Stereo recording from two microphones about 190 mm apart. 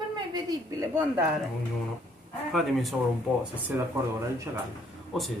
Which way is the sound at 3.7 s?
10° right (ahead or behind).